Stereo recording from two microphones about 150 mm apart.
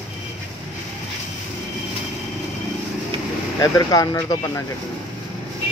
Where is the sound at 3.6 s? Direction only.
25° left (ahead or behind).